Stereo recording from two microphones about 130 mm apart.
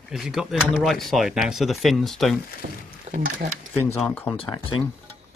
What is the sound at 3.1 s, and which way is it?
Speech, 85° right.